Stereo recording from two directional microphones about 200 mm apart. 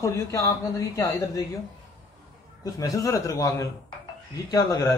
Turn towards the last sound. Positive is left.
turn(degrees=20)  # may be behind; listen again after turning